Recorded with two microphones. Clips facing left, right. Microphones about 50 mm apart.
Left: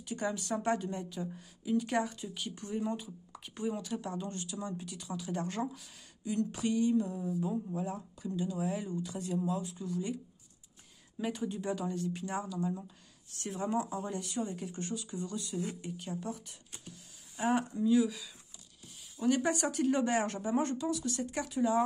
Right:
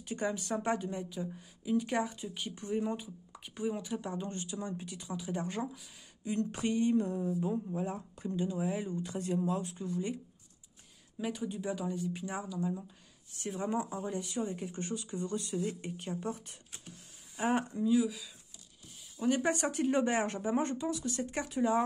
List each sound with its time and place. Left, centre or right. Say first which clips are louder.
0.0 s a woman's voice: right 1 dB; right
6.2 s speech: even; right
7.2 s speech: right 1 dB; right
8.5 s a woman's voice: right 1 dB; centre
9.0 s speech: right 1 dB; right
11.1 s a woman's voice: left 1 dB; centre
12.5 s speech: even; centre
13.4 s a woman's voice: left 1 dB; centre; by 16.5 s right
17.4 s speech: even; right
17.8 s speech: left 2 dB; centre
19.2 s a woman's voice: even; centre
19.5 s speech: even; right